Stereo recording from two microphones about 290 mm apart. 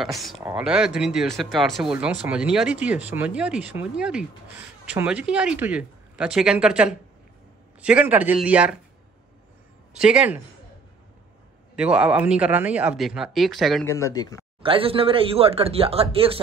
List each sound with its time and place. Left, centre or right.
0.0 s speech: centre
9.9 s speech: centre
11.7 s speech: centre
14.6 s speech: centre